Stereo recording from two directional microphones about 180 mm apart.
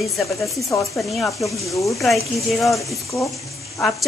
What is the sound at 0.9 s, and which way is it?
A woman's voice, centre (ahead or behind).